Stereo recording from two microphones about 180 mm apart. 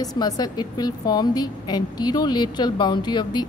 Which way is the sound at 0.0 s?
20° left (ahead or behind).